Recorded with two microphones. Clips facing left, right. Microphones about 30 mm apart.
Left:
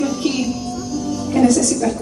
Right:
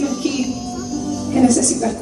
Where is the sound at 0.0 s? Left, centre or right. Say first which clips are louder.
Even; centre.